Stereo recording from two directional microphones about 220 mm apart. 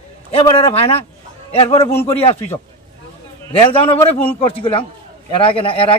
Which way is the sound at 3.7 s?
25° left (ahead or behind).